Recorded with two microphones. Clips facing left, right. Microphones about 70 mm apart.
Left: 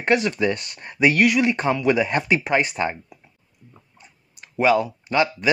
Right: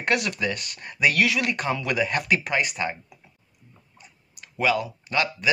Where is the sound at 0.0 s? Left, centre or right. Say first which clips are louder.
Left 5 dB; left.